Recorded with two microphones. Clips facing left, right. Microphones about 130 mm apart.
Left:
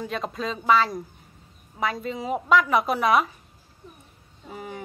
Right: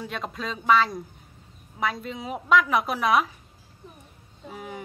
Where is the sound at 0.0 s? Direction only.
Centre (ahead or behind).